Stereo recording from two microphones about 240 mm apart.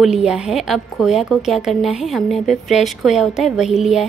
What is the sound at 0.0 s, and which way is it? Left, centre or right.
A woman's voice, centre.